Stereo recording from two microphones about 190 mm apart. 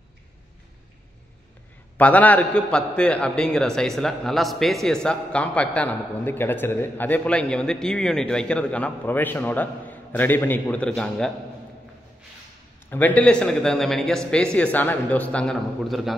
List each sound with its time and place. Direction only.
2.0 s a man's voice: 10° left (ahead or behind)
12.9 s a man's voice: 10° left (ahead or behind)